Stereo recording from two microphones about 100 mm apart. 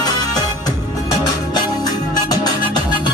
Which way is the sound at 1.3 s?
40° left (ahead or behind).